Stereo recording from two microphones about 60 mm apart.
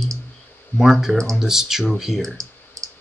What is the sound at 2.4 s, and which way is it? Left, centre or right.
Clicking, right.